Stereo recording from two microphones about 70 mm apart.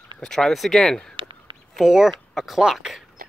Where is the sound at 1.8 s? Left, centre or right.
Centre.